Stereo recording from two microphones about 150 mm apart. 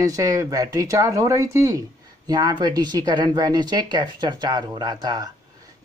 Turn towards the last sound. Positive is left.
turn(degrees=-25)  # may be behind; listen again after turning